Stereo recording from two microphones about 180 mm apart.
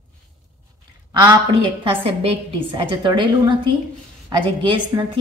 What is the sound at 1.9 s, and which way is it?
A woman's voice, 30° right (ahead or behind).